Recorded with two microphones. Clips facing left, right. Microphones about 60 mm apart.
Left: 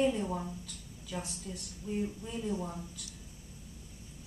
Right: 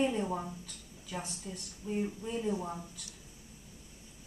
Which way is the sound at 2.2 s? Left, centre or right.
Centre.